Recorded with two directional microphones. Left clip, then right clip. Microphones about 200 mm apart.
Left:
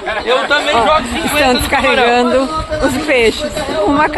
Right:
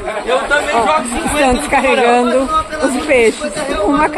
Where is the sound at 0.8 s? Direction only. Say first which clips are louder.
Left 2 dB; 25° right (ahead or behind).